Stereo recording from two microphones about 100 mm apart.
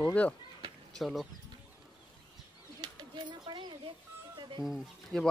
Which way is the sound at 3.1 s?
50° right (ahead or behind).